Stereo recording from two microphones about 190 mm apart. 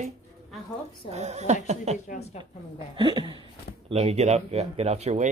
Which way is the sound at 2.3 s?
35° left (ahead or behind).